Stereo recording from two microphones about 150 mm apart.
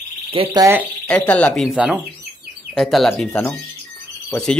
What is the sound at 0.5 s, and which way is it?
Speech, 20° right (ahead or behind).